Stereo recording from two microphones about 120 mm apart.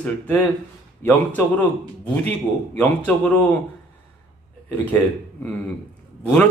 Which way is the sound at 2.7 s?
15° left (ahead or behind).